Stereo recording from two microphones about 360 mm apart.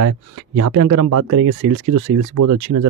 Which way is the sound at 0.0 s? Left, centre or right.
Right.